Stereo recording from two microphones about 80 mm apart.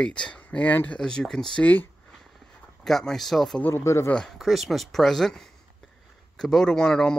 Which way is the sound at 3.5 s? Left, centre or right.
Left.